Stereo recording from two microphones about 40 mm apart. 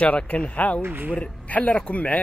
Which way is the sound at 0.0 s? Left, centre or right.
Left.